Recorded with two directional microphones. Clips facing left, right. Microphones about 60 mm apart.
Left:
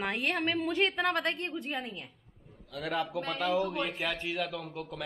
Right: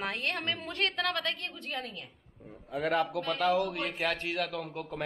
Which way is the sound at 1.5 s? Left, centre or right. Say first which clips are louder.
Left 3 dB; centre.